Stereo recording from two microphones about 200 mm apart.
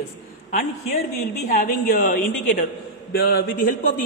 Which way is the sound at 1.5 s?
45° left (ahead or behind).